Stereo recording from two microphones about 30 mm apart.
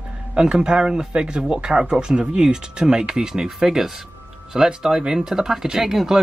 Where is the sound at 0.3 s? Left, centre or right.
Right.